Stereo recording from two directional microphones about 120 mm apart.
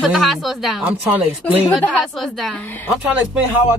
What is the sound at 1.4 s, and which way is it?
Speech, 10° left (ahead or behind).